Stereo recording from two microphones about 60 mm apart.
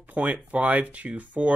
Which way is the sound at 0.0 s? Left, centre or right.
Right.